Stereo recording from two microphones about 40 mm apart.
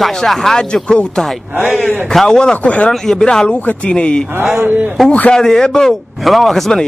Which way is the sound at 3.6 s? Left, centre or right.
Left.